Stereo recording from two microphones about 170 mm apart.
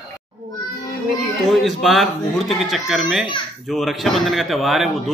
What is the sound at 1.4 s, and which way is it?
A man's voice, centre (ahead or behind).